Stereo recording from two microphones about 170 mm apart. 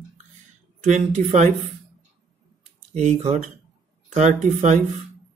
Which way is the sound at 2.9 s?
40° right (ahead or behind).